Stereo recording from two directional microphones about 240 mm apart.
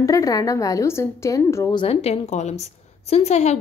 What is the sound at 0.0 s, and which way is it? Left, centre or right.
A woman's voice, centre.